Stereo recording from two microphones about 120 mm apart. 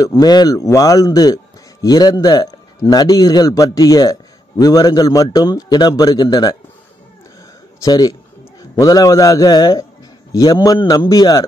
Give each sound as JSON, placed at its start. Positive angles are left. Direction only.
{"t": 0.0, "sound": "a man's voice", "side_deg": 30}
{"t": 7.8, "sound": "a man's voice", "side_deg": 35}